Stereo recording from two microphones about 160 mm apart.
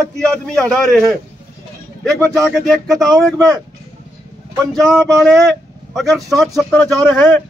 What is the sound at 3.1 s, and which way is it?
Speech, 20° right (ahead or behind).